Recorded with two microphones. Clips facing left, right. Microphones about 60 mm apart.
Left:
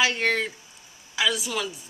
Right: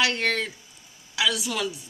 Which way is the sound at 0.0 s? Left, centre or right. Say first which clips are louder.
Left 1 dB; centre.